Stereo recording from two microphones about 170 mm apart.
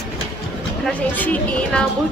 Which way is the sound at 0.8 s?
10° left (ahead or behind).